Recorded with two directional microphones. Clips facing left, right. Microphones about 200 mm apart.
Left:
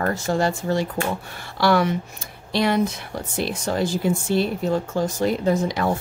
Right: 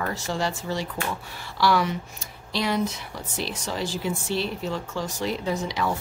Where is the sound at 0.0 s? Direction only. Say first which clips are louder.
Left 6 dB; 50° left (ahead or behind).